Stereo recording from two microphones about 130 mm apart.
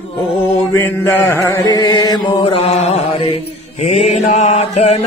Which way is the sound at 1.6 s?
30° left (ahead or behind).